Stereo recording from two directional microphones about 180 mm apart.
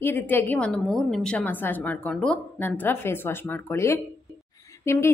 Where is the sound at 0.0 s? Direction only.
10° left (ahead or behind).